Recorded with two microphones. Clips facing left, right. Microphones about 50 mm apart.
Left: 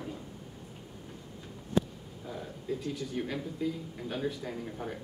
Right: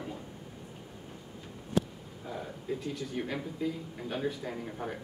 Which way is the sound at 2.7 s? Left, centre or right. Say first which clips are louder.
Left 1 dB; centre.